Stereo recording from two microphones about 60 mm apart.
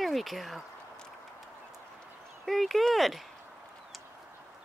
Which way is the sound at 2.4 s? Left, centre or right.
Centre.